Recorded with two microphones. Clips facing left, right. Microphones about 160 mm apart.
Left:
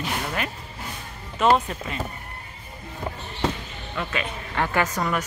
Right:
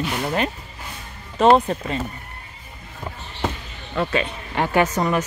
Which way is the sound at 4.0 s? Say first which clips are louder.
Right 7 dB; 40° right (ahead or behind).